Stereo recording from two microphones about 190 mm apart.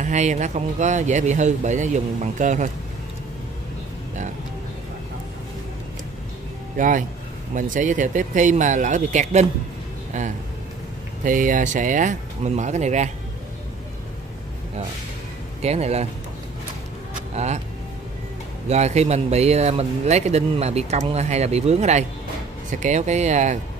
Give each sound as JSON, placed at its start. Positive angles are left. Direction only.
{"t": 0.0, "sound": "speech", "side_deg": -40}
{"t": 6.8, "sound": "speech", "side_deg": -45}
{"t": 11.2, "sound": "speech", "side_deg": -45}
{"t": 15.6, "sound": "speech", "side_deg": -35}
{"t": 17.4, "sound": "speech", "side_deg": -35}
{"t": 18.7, "sound": "speech", "side_deg": -35}